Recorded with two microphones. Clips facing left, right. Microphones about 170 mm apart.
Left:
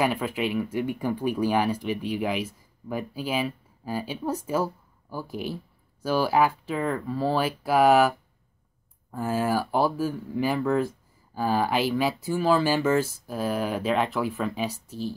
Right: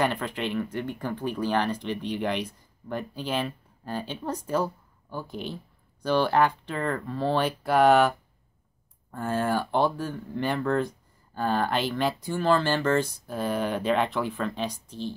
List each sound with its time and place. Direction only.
0.0 s speech: 5° left (ahead or behind)